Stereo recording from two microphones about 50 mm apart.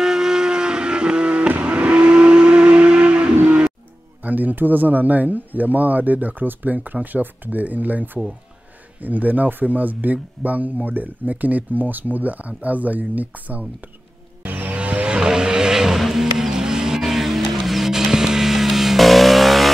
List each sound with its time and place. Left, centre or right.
0.0 s vehicle: centre
4.2 s speech: right
14.4 s vehicle: right
14.8 s vehicle: right; by 19.7 s centre